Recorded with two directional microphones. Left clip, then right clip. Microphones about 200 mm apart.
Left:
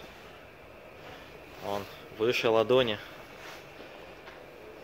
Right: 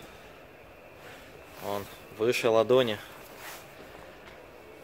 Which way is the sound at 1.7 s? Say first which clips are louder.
Even; 20° right (ahead or behind).